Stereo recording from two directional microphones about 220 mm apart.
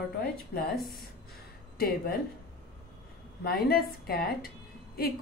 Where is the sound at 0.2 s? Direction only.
45° left (ahead or behind).